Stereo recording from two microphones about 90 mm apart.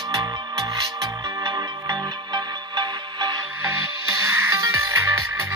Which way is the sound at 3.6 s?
30° right (ahead or behind).